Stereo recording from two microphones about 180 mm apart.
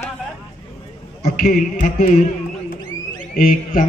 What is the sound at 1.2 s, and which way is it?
Speech, 55° left (ahead or behind).